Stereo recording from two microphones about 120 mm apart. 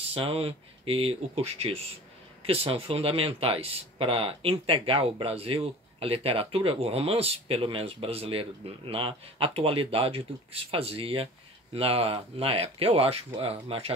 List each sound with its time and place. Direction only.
0.1 s speech: 55° right (ahead or behind)